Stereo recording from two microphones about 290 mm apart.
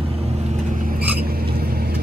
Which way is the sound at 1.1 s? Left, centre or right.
Right.